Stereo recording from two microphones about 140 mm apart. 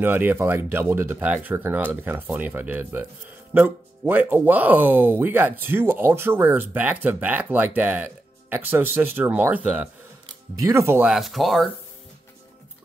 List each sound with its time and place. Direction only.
0.0 s speech: 15° right (ahead or behind)
11.0 s speech: 5° right (ahead or behind)